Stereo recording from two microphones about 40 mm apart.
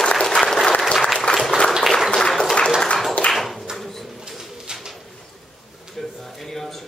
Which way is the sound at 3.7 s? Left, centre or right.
Centre.